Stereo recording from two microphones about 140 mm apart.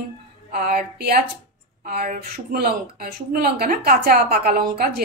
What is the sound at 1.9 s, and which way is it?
A woman's voice, 75° right (ahead or behind).